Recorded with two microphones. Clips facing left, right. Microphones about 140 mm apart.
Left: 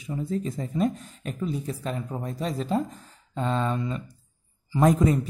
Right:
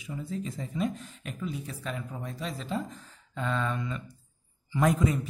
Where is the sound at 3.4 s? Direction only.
35° left (ahead or behind).